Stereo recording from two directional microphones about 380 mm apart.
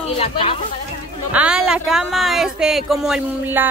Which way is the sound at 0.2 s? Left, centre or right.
Centre.